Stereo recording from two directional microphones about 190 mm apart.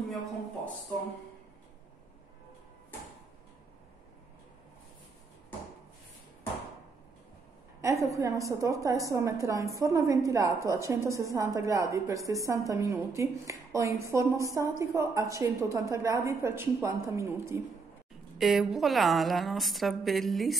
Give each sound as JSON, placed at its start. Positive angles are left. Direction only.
{"t": 7.8, "sound": "a woman's voice", "side_deg": -15}
{"t": 18.4, "sound": "a woman's voice", "side_deg": 0}